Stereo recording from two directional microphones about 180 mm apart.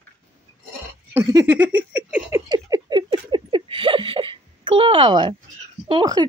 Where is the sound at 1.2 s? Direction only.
20° right (ahead or behind).